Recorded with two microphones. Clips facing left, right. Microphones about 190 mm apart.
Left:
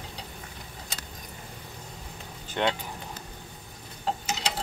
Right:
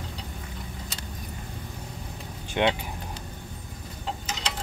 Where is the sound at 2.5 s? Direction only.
15° right (ahead or behind).